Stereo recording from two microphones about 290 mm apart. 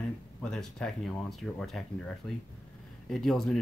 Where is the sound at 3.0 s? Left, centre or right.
Centre.